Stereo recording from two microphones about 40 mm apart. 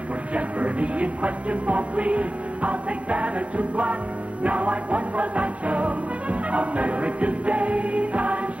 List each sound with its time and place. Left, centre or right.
0.3 s speech: right
4.4 s music: right